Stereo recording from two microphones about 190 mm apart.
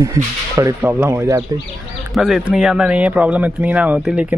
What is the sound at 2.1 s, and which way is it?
Speech, centre (ahead or behind).